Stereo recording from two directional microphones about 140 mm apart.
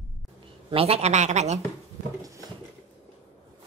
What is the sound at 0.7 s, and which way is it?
Speech, 45° right (ahead or behind).